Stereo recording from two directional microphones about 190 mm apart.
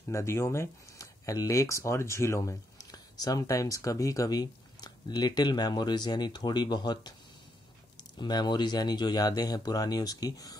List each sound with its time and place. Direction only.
0.1 s speech: 15° left (ahead or behind)
8.2 s speech: 20° left (ahead or behind)